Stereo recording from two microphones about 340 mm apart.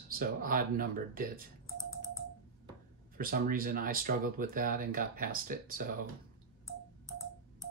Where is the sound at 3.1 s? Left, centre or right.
Right.